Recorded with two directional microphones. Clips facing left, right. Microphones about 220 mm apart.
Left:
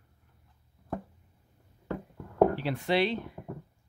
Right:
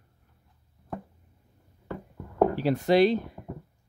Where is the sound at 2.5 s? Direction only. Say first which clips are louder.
Right 6 dB; 40° right (ahead or behind).